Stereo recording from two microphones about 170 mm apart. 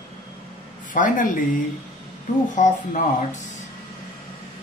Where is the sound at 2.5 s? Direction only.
45° left (ahead or behind).